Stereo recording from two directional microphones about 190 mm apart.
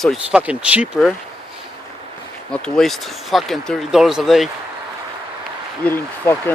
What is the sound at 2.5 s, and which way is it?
Speech, centre (ahead or behind).